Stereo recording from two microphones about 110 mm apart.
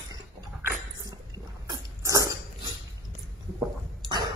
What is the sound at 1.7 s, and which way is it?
Dog, 30° right (ahead or behind).